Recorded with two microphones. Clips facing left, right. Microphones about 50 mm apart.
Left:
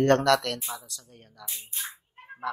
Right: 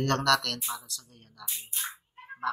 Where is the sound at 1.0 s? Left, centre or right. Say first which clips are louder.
Left 1 dB; left.